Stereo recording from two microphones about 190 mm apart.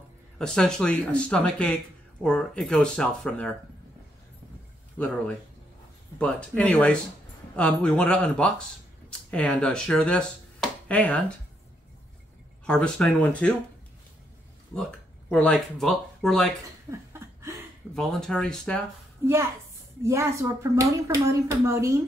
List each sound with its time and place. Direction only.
0.4 s speech: 5° left (ahead or behind)
4.9 s speech: 5° left (ahead or behind)
12.6 s speech: 5° left (ahead or behind)
14.8 s speech: 5° left (ahead or behind)
16.9 s a sound: 15° right (ahead or behind)
17.9 s speech: 5° left (ahead or behind)
20.0 s speech: 15° right (ahead or behind)